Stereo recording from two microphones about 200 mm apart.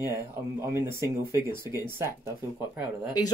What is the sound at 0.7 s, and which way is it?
Speech, 15° right (ahead or behind).